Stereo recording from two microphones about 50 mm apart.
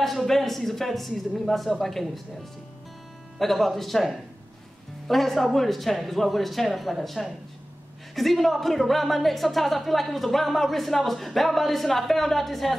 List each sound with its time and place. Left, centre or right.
0.0 s speech: centre
3.3 s speech: centre